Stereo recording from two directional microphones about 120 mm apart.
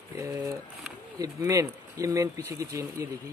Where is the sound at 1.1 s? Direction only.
30° right (ahead or behind).